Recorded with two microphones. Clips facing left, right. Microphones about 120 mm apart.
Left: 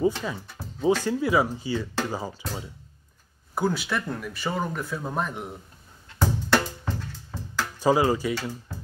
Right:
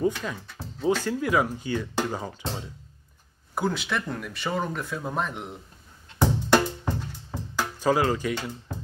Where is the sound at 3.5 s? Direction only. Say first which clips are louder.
Left 1 dB; centre (ahead or behind).